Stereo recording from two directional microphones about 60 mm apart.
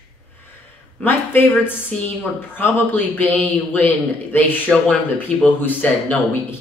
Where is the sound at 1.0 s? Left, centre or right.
Left.